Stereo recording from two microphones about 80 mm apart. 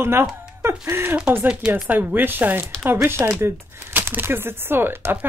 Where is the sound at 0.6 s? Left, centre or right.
Right.